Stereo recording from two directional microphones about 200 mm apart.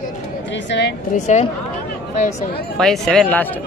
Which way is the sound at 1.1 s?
35° left (ahead or behind).